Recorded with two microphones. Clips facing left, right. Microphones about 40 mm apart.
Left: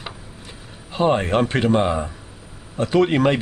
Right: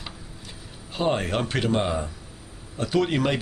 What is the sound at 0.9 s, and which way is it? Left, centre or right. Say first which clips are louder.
Speech: left 6 dB; centre.